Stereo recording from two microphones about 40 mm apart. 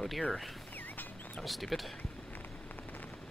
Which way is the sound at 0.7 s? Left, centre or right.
Left.